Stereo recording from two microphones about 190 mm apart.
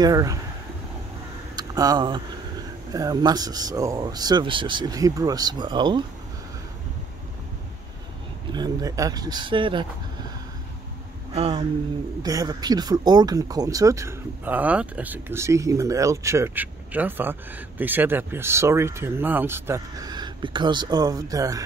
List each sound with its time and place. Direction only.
0.0 s speech: 20° right (ahead or behind)
1.6 s speech: 20° right (ahead or behind)
8.5 s speech: 20° right (ahead or behind)
11.3 s speech: 30° right (ahead or behind)
12.2 s speech: 20° right (ahead or behind)